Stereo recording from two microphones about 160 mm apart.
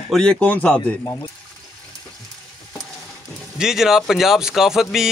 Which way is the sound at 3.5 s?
5° right (ahead or behind).